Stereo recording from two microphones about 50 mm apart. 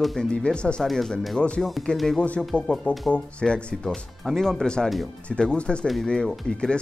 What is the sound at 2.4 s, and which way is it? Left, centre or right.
Speech, centre.